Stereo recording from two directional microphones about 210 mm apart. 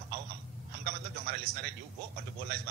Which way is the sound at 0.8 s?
50° right (ahead or behind).